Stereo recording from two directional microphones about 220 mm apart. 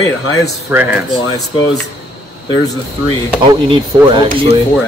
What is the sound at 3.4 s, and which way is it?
Speech, 20° right (ahead or behind).